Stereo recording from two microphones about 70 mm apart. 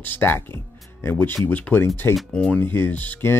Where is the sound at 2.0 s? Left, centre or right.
Left.